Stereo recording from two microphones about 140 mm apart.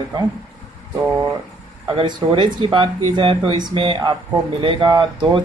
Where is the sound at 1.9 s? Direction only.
35° right (ahead or behind).